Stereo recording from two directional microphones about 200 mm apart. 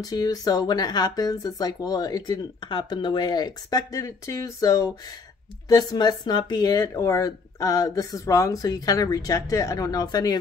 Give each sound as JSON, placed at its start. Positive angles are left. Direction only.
{"t": 0.0, "sound": "speech", "side_deg": 20}